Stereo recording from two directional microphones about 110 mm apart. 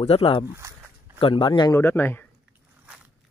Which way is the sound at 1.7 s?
20° left (ahead or behind).